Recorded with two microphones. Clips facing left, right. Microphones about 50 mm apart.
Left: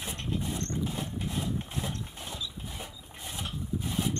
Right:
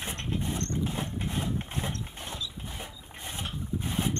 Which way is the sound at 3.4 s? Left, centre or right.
Right.